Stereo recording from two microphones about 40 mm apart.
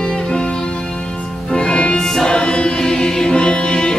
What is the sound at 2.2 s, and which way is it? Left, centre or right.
Music, left.